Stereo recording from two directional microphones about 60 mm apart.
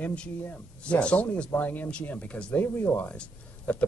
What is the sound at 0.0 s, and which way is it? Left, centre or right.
A man's voice, centre.